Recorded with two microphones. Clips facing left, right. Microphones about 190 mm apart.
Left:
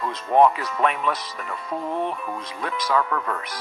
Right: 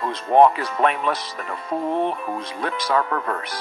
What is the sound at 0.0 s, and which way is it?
A man's voice, 35° right (ahead or behind).